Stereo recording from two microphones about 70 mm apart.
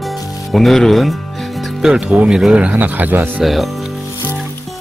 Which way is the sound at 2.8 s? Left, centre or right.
Right.